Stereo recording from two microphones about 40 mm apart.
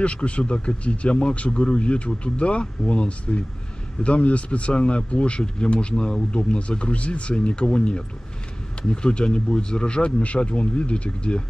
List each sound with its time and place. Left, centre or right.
0.0 s speech: left